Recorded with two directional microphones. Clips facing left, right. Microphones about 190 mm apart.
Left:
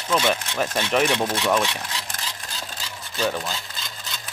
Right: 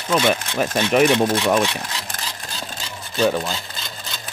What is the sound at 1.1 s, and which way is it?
Speech, 45° right (ahead or behind).